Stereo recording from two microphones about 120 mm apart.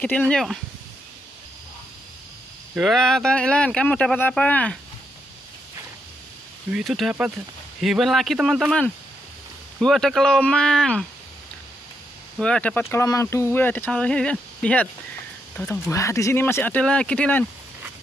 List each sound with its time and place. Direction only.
0.0 s speech: 10° left (ahead or behind)
2.8 s speech: centre (ahead or behind)
6.7 s speech: centre (ahead or behind)
9.8 s speech: 5° left (ahead or behind)
12.4 s speech: 5° left (ahead or behind)
13.0 s speech: 25° left (ahead or behind); by 15.8 s 10° left (ahead or behind)
15.8 s speech: 25° left (ahead or behind)